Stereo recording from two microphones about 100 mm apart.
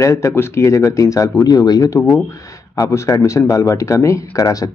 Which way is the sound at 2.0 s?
25° left (ahead or behind).